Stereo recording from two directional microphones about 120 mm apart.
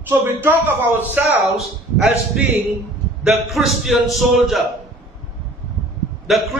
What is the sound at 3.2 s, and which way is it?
A man's voice, centre (ahead or behind).